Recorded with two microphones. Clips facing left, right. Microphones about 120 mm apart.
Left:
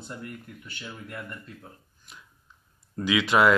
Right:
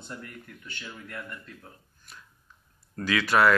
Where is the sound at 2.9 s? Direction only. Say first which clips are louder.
Left 1 dB; 15° left (ahead or behind).